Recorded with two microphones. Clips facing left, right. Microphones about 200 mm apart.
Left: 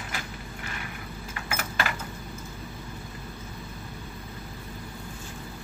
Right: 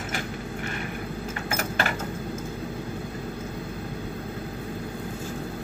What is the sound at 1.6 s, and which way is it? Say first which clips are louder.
Vehicle: right 3 dB; 45° right (ahead or behind).